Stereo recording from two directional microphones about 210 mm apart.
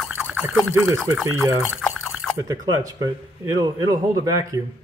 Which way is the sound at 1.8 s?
Centre (ahead or behind).